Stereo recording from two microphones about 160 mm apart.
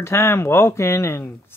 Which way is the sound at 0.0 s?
15° left (ahead or behind).